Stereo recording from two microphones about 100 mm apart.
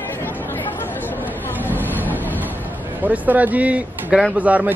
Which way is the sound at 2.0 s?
20° right (ahead or behind).